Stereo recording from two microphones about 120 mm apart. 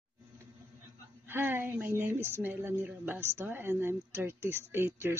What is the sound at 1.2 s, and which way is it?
A woman's voice, 20° right (ahead or behind).